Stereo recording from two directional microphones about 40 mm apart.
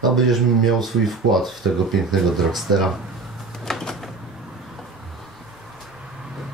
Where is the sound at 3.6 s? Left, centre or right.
Centre.